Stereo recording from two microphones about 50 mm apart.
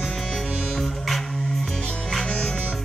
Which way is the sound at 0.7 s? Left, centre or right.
Centre.